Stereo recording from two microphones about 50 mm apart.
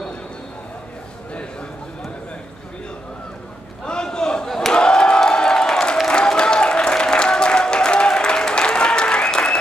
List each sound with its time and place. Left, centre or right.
3.8 s crowd: centre